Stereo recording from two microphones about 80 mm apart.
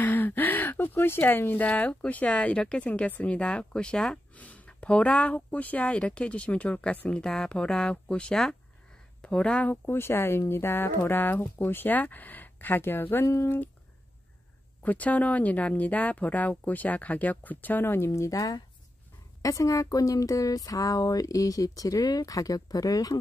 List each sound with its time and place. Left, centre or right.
0.0 s speech: left
13.3 s speech: left
14.8 s speech: centre; by 23.1 s left